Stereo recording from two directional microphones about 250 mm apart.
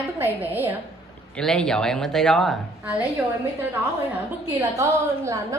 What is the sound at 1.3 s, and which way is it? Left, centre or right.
A woman's voice, centre.